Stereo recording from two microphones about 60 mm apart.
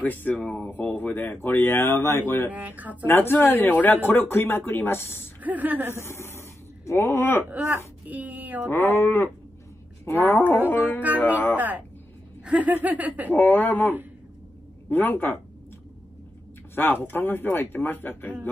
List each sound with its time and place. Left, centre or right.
0.0 s speech: left
0.4 s speech: centre
0.7 s speech: left
1.6 s speech: left
2.5 s laughter: right
3.2 s speech: left
5.4 s laughter: right
5.9 s speech: left
8.1 s laughter: right
8.6 s speech: left
10.1 s speech: left
11.5 s laughter: right
13.3 s speech: left
16.7 s speech: left